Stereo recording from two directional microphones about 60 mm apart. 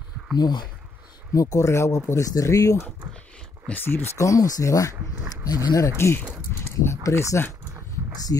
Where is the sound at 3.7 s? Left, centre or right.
Centre.